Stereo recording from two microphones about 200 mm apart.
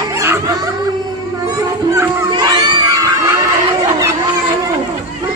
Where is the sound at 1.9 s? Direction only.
15° right (ahead or behind).